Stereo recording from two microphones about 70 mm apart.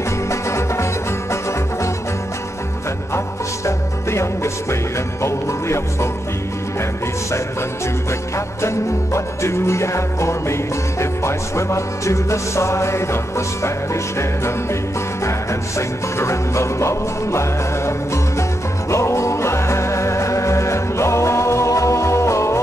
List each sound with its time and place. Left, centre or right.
0.3 s music: left
3.6 s music: left
8.6 s music: left
16.2 s music: left